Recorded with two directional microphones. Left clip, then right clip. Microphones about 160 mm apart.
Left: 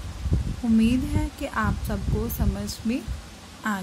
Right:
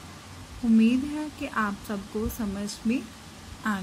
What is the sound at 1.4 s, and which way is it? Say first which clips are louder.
A woman's voice: left 1 dB; 10° left (ahead or behind).